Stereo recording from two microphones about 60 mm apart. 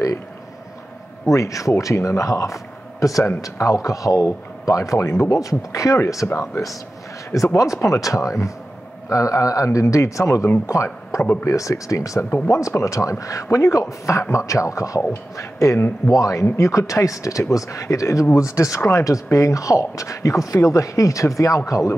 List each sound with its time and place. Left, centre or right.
1.2 s speech: left
6.2 s speech: left
16.1 s speech: left